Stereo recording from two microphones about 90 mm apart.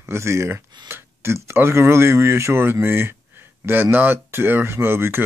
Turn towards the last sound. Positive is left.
turn(degrees=-25)  # may be behind; listen again after turning